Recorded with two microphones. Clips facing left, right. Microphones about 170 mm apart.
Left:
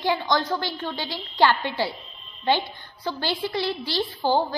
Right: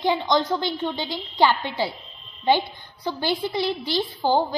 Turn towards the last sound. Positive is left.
turn(degrees=-15)  # may be behind; listen again after turning